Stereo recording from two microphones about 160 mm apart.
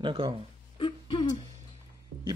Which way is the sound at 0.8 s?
30° left (ahead or behind).